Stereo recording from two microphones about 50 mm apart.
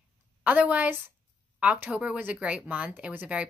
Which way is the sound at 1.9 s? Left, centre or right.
Right.